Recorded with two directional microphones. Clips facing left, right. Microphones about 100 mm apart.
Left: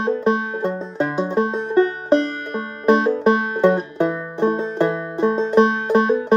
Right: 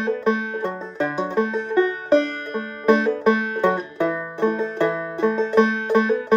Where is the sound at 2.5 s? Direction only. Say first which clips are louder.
Left 1 dB; 25° left (ahead or behind).